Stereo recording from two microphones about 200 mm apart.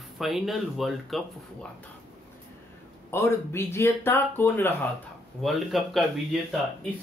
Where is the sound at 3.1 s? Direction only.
10° left (ahead or behind).